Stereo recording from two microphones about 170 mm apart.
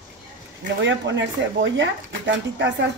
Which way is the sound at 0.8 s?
90° right.